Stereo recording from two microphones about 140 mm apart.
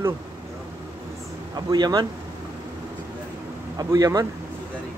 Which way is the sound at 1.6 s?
30° right (ahead or behind).